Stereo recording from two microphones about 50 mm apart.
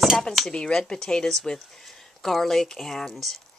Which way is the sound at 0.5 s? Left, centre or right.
Centre.